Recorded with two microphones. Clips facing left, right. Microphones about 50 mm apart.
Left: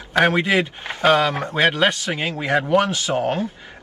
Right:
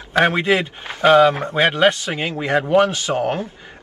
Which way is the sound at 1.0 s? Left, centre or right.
Centre.